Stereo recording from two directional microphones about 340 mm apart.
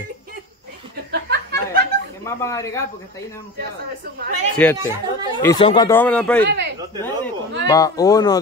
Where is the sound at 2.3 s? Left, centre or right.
Centre.